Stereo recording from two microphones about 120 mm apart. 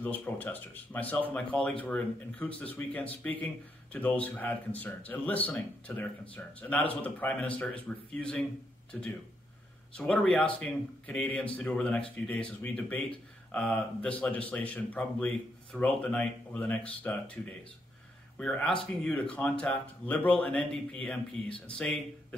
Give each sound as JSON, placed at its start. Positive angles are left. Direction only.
{"t": 0.0, "sound": "speech", "side_deg": 15}
{"t": 9.9, "sound": "speech", "side_deg": 10}
{"t": 18.4, "sound": "speech", "side_deg": 5}